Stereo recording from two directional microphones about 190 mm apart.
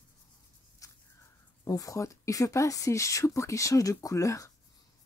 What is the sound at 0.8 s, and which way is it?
Walk, 15° left (ahead or behind).